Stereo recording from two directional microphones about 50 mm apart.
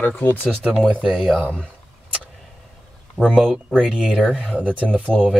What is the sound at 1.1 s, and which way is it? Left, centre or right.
Speech, centre.